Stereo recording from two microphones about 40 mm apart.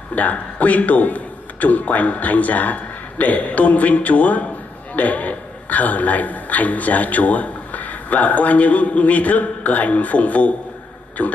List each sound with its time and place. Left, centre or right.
0.1 s a man's voice: left